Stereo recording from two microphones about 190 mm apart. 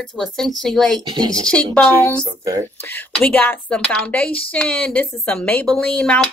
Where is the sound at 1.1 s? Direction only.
20° right (ahead or behind).